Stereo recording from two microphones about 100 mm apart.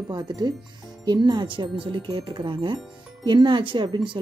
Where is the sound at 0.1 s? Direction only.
50° right (ahead or behind).